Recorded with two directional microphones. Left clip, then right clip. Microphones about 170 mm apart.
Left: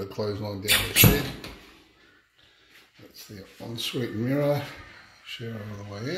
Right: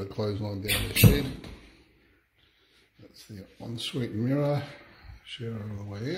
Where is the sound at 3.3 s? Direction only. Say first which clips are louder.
Left 3 dB; 10° right (ahead or behind).